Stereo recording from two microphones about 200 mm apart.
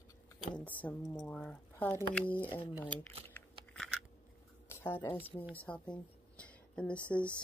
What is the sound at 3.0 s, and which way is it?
Typing, 5° left (ahead or behind).